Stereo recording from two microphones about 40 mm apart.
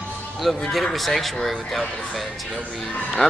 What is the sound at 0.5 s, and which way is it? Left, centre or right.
Speech, centre.